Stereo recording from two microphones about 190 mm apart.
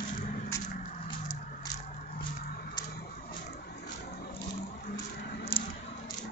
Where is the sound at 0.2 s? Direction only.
45° left (ahead or behind).